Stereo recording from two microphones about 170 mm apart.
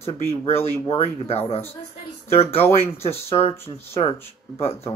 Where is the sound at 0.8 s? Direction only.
35° left (ahead or behind).